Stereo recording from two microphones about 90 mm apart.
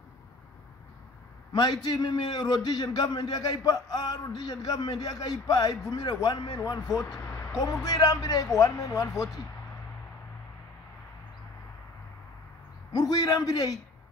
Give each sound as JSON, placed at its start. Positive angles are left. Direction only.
{"t": 1.5, "sound": "a man's voice", "side_deg": 50}
{"t": 12.9, "sound": "a man's voice", "side_deg": 50}